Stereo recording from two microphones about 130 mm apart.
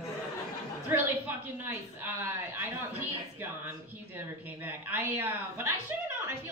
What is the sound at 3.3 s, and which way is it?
A woman's voice, 15° right (ahead or behind).